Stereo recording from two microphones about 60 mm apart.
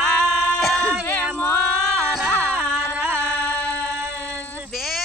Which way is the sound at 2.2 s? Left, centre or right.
Left.